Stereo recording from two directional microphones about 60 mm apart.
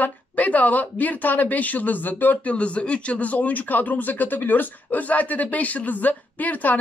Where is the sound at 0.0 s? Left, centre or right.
Left.